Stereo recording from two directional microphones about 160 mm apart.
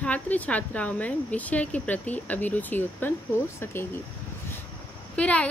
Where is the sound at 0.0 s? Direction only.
10° left (ahead or behind).